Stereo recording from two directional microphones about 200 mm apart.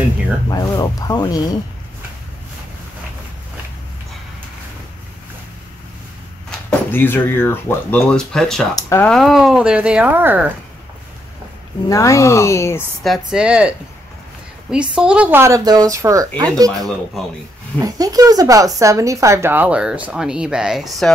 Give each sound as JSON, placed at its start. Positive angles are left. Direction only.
{"t": 0.5, "sound": "speech", "side_deg": 20}
{"t": 6.9, "sound": "speech", "side_deg": 10}
{"t": 8.7, "sound": "speech", "side_deg": 15}
{"t": 9.1, "sound": "speech", "side_deg": 0}
{"t": 11.9, "sound": "speech", "side_deg": 15}
{"t": 13.0, "sound": "speech", "side_deg": 0}